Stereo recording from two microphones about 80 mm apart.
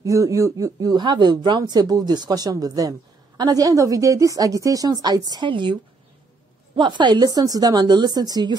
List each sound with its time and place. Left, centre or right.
0.0 s speech: right
0.7 s speech: right